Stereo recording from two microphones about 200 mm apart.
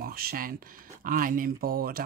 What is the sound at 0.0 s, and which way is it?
Speech, 50° right (ahead or behind).